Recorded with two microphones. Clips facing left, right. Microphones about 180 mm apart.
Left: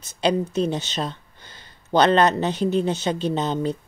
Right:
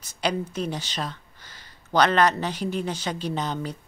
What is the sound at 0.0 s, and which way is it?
Speech, 25° left (ahead or behind).